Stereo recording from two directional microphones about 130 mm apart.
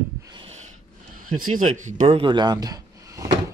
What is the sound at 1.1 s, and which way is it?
Speech, 90° right.